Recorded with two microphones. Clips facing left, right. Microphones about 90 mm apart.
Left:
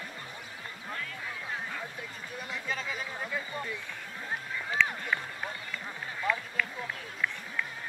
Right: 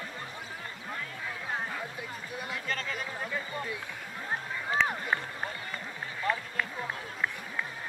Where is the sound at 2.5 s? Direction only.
5° left (ahead or behind).